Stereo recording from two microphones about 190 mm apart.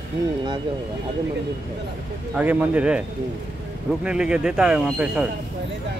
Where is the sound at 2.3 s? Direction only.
5° right (ahead or behind).